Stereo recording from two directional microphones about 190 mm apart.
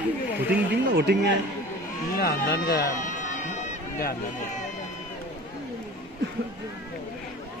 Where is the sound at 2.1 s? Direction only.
55° left (ahead or behind).